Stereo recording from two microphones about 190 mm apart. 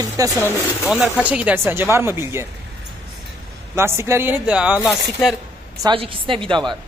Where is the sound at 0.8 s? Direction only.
5° right (ahead or behind).